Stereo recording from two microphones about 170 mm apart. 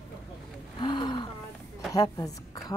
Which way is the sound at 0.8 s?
25° left (ahead or behind).